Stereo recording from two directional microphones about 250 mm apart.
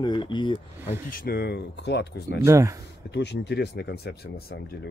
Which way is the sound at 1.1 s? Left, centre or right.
Left.